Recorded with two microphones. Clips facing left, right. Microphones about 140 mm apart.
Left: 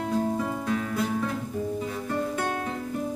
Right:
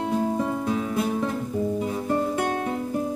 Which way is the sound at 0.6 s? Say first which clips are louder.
Right 3 dB; 25° right (ahead or behind).